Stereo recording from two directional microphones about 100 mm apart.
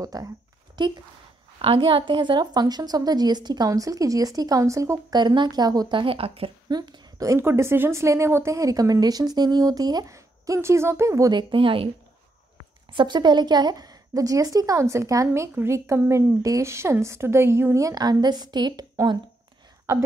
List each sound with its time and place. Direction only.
0.0 s speech: 35° right (ahead or behind)
0.8 s speech: 45° right (ahead or behind)
1.6 s speech: 60° right (ahead or behind); by 5.0 s 30° right (ahead or behind)
5.1 s a woman's voice: 50° right (ahead or behind)
5.9 s a woman's voice: 65° right (ahead or behind)
6.7 s a woman's voice: 40° right (ahead or behind)
7.3 s speech: 25° right (ahead or behind)
11.3 s speech: 60° right (ahead or behind)
12.9 s speech: 50° right (ahead or behind)